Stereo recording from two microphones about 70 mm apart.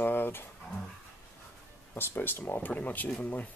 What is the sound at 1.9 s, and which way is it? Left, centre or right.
Speech, left.